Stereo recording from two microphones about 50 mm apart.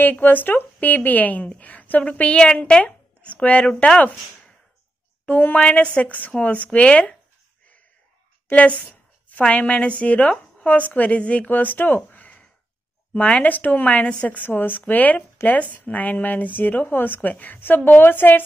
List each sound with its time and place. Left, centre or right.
0.0 s a woman's voice: left; by 2.8 s centre
2.8 s a sound: left
5.2 s speech: left
5.6 s a woman's voice: left
8.5 s a sound: left
9.4 s a woman's voice: left